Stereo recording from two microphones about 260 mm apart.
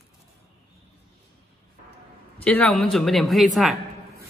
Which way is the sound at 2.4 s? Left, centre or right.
Centre.